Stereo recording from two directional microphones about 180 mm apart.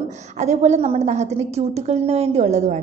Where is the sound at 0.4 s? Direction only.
40° right (ahead or behind).